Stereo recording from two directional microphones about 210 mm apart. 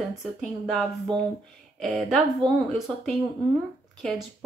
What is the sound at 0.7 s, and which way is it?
Speech, centre (ahead or behind).